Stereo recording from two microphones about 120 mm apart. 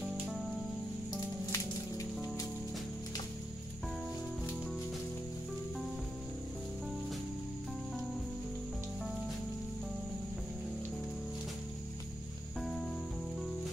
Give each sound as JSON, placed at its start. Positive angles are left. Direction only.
{"t": 1.4, "sound": "music", "side_deg": 25}
{"t": 12.5, "sound": "music", "side_deg": 0}